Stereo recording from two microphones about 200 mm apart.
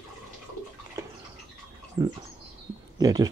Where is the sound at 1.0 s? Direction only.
15° right (ahead or behind).